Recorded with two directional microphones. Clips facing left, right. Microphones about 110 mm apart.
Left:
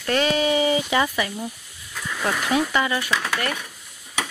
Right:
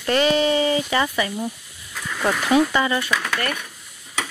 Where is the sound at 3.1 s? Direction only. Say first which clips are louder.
Right 1 dB; 15° left (ahead or behind).